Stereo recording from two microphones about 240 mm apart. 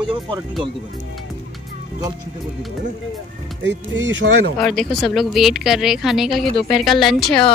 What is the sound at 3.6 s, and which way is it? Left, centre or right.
Speech, right.